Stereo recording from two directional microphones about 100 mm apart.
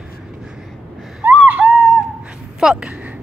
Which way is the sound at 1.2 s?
15° right (ahead or behind).